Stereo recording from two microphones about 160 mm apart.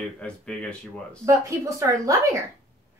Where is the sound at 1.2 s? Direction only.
20° right (ahead or behind).